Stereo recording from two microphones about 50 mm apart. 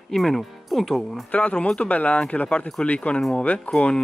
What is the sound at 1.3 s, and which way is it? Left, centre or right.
Speech, left.